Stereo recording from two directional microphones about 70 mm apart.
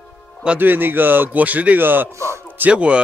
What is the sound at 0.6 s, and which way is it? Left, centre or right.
A man's voice, right.